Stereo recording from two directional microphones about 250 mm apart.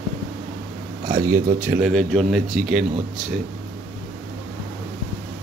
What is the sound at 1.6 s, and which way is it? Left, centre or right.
Speech, centre.